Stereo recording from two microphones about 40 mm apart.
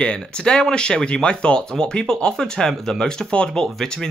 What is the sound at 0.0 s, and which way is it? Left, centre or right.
Speech, left.